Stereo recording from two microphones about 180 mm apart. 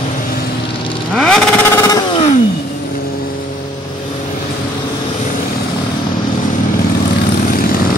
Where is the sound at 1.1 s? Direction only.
5° left (ahead or behind).